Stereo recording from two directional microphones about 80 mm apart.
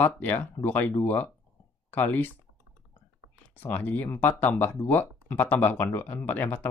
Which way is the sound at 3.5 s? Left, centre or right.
Left.